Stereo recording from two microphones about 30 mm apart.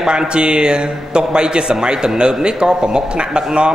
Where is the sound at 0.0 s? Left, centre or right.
Right.